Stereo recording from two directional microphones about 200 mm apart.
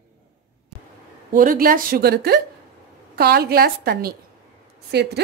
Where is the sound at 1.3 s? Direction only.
45° right (ahead or behind).